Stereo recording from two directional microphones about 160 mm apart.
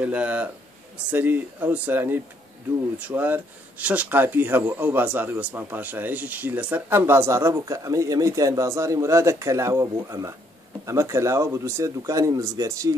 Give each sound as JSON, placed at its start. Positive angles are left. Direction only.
{"t": 0.0, "sound": "speech", "side_deg": -10}